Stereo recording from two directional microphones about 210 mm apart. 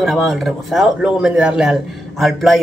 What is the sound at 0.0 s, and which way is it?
A man's voice, centre (ahead or behind).